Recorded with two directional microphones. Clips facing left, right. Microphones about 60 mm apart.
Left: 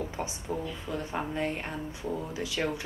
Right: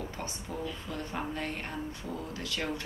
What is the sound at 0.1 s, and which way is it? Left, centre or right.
Speech, centre.